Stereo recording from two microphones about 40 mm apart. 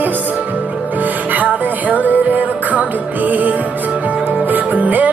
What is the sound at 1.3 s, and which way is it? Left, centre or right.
Music, right.